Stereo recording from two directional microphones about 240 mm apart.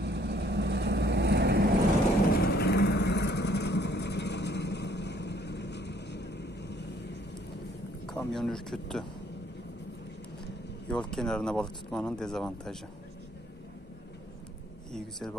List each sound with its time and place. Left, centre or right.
0.0 s vehicle: right
2.3 s vehicle: left
8.1 s speech: centre
10.9 s speech: centre
14.9 s speech: centre